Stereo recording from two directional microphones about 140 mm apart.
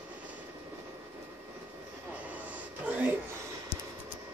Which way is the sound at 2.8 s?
10° right (ahead or behind).